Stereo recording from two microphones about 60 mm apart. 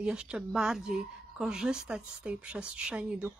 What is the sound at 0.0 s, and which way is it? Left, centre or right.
A woman's voice, centre.